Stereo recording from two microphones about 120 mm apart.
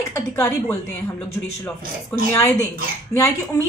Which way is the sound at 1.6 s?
15° left (ahead or behind).